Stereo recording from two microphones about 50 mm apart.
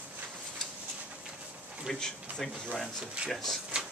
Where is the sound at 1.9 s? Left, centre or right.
Centre.